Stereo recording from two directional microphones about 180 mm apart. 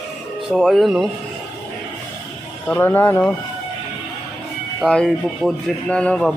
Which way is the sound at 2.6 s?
10° left (ahead or behind).